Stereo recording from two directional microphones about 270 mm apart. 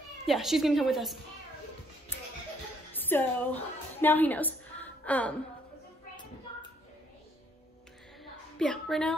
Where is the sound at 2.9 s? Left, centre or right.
Centre.